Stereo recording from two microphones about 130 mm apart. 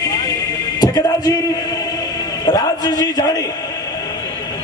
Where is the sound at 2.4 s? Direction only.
30° left (ahead or behind).